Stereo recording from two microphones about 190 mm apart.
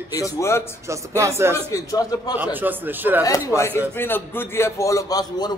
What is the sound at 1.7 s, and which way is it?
Speech, 20° left (ahead or behind).